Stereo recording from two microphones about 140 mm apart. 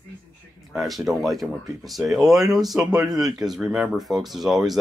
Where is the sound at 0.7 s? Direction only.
Centre (ahead or behind).